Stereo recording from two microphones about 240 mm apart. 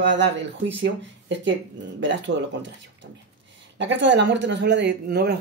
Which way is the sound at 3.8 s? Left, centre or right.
Right.